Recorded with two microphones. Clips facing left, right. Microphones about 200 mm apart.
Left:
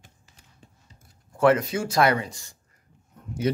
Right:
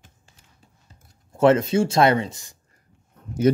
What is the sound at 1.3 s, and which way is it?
Speech, 25° right (ahead or behind).